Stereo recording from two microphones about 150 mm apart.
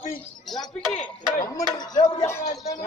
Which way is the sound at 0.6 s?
5° left (ahead or behind).